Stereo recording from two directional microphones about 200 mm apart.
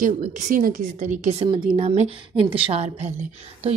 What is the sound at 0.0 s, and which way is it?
A woman's voice, 40° right (ahead or behind).